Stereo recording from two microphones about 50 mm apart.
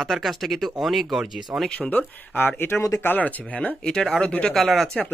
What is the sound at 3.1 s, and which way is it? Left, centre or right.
Speech, left.